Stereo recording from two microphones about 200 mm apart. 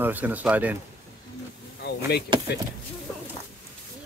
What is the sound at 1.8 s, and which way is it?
Speech, 55° left (ahead or behind).